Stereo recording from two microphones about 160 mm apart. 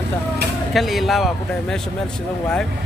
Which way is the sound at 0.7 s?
Centre (ahead or behind).